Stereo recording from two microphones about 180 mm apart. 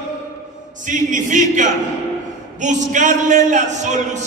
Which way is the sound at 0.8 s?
45° right (ahead or behind).